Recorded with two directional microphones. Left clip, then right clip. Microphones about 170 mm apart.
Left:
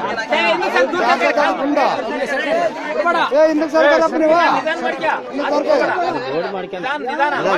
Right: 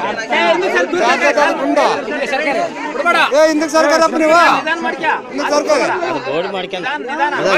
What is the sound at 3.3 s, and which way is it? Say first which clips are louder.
Speech: right 2 dB; 5° right (ahead or behind).